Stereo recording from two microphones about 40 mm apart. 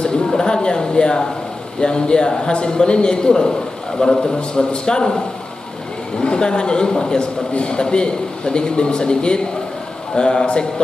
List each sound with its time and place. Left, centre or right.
0.0 s a man's voice: centre
6.1 s a man's voice: left